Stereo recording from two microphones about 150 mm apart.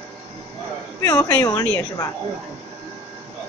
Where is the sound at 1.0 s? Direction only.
20° left (ahead or behind).